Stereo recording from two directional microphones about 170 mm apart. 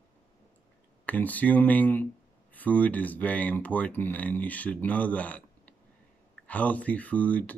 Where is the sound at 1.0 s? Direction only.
10° left (ahead or behind).